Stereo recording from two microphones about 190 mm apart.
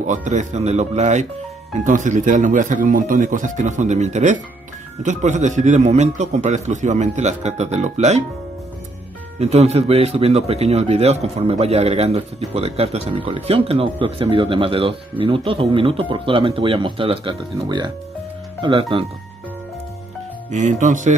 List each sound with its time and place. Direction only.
0.0 s speech: 40° right (ahead or behind)
9.4 s speech: 35° right (ahead or behind)
20.5 s speech: 40° right (ahead or behind)